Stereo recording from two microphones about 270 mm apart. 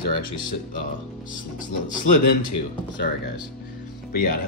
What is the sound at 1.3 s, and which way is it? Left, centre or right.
Speech, left.